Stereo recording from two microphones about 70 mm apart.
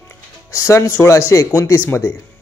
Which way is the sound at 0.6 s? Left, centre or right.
Left.